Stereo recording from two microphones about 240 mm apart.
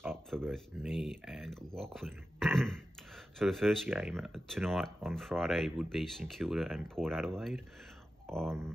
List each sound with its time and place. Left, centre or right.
0.3 s speech: centre